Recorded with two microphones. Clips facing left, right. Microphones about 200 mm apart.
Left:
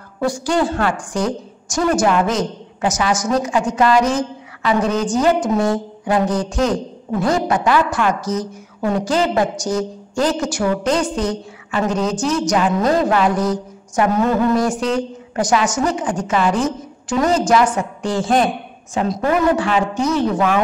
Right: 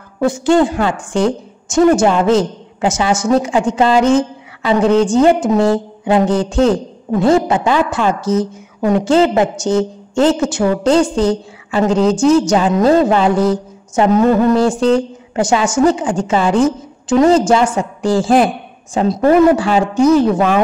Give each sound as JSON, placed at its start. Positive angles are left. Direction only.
{"t": 0.2, "sound": "a woman's voice", "side_deg": -20}